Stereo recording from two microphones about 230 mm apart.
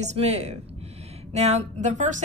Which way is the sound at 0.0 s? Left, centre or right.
Right.